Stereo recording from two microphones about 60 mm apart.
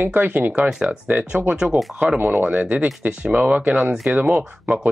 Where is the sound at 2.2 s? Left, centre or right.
Right.